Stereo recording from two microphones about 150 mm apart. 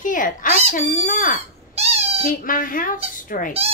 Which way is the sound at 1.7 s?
45° right (ahead or behind).